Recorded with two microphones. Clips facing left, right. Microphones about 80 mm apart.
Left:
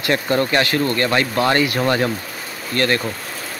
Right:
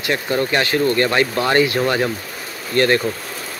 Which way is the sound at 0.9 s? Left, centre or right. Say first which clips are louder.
Right 1 dB; right.